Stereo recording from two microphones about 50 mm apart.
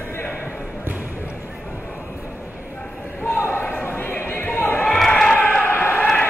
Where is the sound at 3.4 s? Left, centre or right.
Left.